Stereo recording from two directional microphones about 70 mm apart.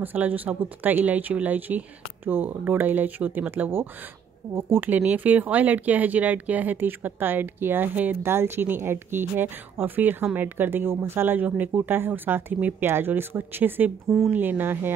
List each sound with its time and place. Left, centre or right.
0.0 s speech: right